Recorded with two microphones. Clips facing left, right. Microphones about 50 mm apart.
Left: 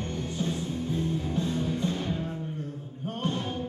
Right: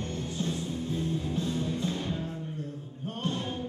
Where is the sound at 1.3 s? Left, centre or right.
Centre.